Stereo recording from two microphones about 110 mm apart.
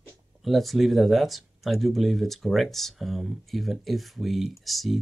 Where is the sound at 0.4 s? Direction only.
Centre (ahead or behind).